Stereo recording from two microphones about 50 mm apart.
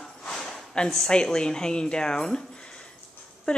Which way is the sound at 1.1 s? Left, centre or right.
Centre.